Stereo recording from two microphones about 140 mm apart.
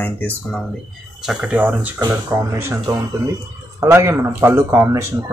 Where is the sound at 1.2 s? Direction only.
5° right (ahead or behind).